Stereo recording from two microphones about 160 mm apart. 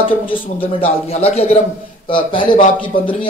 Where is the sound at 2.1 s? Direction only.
30° left (ahead or behind).